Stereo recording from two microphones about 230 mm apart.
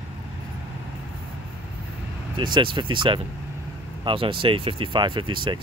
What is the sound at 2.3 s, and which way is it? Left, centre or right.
Speech, centre.